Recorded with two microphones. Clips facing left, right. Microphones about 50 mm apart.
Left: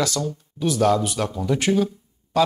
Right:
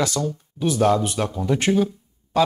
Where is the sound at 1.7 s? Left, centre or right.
Centre.